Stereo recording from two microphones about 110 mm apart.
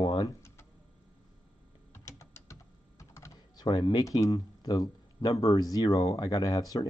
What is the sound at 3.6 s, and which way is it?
Speech, 40° left (ahead or behind).